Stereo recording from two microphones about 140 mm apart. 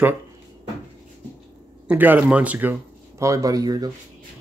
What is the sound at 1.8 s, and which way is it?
Speech, 10° right (ahead or behind).